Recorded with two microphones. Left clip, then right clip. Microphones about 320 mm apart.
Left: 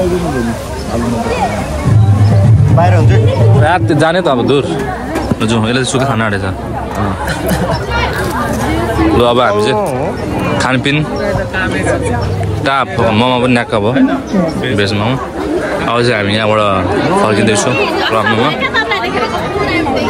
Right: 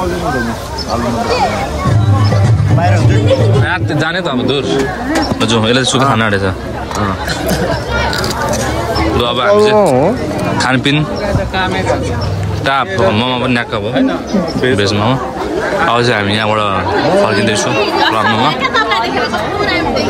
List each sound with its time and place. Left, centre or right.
3.6 s a man's voice: centre
9.1 s a man's voice: centre
12.6 s a man's voice: centre
15.9 s a man's voice: centre
17.7 s speech: right
18.6 s chatter: right